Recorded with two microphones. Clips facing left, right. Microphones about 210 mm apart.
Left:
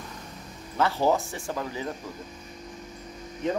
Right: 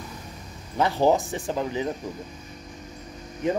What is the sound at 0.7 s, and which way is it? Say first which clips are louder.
Speech: right 3 dB; 15° right (ahead or behind).